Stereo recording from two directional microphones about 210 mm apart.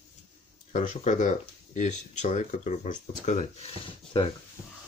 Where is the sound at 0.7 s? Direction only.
35° left (ahead or behind).